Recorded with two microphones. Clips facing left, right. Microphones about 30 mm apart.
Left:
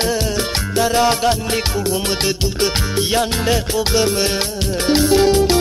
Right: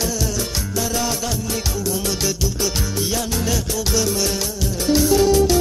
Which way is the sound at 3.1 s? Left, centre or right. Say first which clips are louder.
Left 7 dB; left.